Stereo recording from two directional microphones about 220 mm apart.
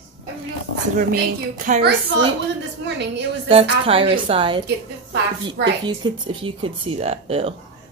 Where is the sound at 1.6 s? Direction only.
35° right (ahead or behind).